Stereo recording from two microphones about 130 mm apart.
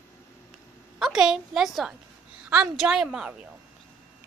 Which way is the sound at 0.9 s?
5° right (ahead or behind).